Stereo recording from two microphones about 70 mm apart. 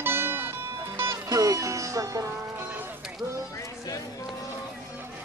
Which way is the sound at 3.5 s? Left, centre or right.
Left.